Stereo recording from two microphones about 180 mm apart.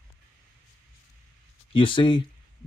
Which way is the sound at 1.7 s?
30° left (ahead or behind).